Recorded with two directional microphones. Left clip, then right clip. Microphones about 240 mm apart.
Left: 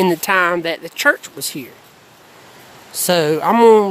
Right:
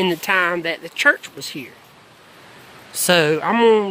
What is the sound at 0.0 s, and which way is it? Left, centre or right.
Speech, left.